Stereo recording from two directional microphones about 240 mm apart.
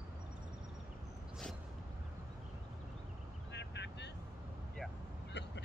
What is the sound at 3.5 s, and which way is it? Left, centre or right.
Vehicle, left.